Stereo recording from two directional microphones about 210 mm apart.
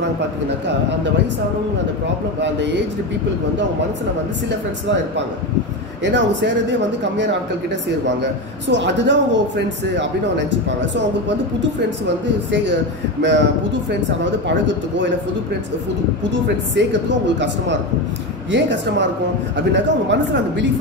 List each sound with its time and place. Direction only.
2.4 s a man's voice: 55° right (ahead or behind)
6.0 s a man's voice: 60° right (ahead or behind)
13.2 s a man's voice: 60° right (ahead or behind)
14.5 s a man's voice: 60° right (ahead or behind)
16.3 s a man's voice: 55° right (ahead or behind)
18.5 s a man's voice: 60° right (ahead or behind)